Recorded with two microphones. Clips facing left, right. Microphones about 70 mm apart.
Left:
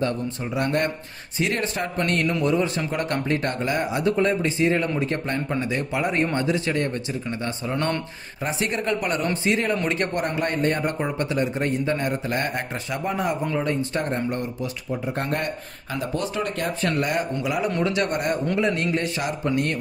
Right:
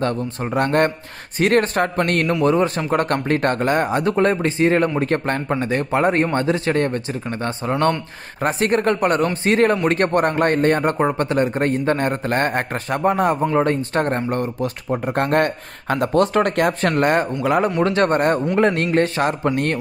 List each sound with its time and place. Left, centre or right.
0.0 s speech: right
16.9 s speech: right